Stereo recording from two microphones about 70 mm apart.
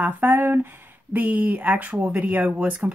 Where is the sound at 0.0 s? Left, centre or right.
Right.